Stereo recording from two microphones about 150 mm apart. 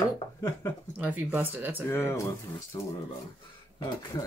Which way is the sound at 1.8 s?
15° left (ahead or behind).